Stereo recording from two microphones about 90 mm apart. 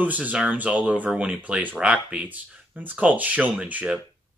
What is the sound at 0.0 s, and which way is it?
Speech, 15° right (ahead or behind).